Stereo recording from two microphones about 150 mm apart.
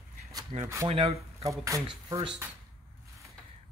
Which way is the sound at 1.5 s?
20° right (ahead or behind).